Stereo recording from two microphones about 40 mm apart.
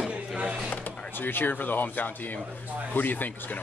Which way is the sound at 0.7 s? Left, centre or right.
Left.